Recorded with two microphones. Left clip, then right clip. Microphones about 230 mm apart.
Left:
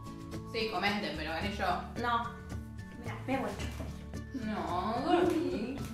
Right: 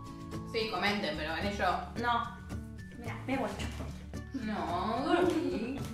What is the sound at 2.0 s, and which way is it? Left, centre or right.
Speech, centre.